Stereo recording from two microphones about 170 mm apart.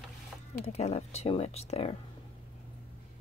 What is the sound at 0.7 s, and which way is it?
Speech, 40° left (ahead or behind).